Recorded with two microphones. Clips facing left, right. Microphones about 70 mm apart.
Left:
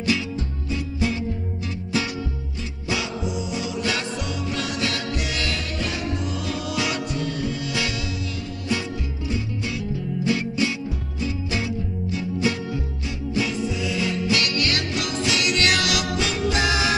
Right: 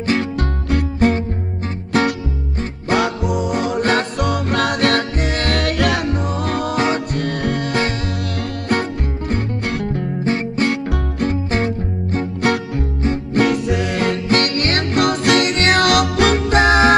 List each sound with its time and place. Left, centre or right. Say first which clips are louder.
0.0 s music: right 5 dB; right
0.4 s music: right 9 dB; right